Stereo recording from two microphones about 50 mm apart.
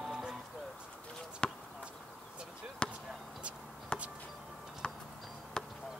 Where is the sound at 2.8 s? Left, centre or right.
Left.